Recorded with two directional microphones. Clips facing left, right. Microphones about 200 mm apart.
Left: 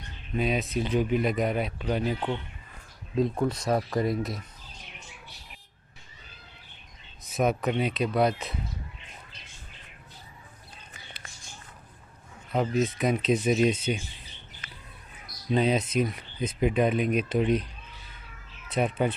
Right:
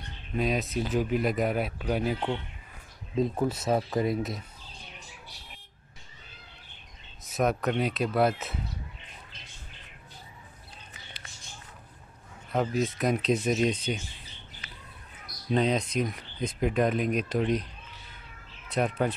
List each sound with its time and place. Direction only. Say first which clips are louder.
0.4 s speech: left 1 dB; centre (ahead or behind)
7.2 s speech: left 1 dB; centre (ahead or behind)
12.5 s speech: left 2 dB; centre (ahead or behind)
14.6 s bird: left 1 dB; 50° left (ahead or behind)
15.5 s speech: left 2 dB; 5° left (ahead or behind)
18.7 s speech: left 1 dB; centre (ahead or behind)